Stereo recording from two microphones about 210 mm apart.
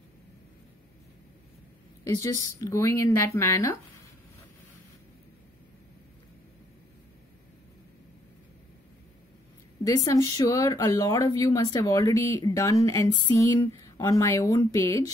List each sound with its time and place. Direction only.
2.0 s speech: 15° left (ahead or behind)
9.8 s speech: 15° left (ahead or behind)